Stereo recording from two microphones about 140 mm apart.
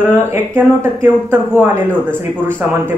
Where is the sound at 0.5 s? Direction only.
15° right (ahead or behind).